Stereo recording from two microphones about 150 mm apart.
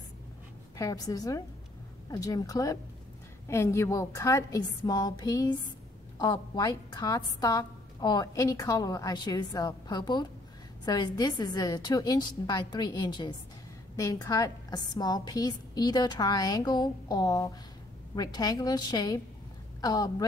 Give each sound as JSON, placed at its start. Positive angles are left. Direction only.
{"t": 0.7, "sound": "a woman's voice", "side_deg": 25}